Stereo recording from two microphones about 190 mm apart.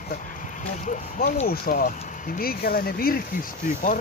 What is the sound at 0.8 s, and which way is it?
Speech, 40° left (ahead or behind).